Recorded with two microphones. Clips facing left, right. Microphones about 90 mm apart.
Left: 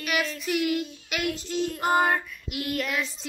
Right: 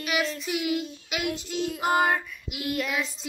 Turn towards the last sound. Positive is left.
turn(degrees=-5)  # may be behind; listen again after turning